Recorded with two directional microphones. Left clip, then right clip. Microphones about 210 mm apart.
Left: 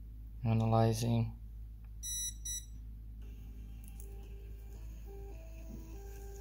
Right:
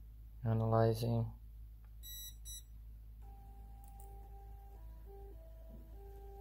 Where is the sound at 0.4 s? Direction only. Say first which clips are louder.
Left 1 dB; 5° right (ahead or behind).